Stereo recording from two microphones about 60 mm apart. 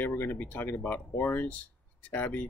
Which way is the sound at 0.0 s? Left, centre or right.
Left.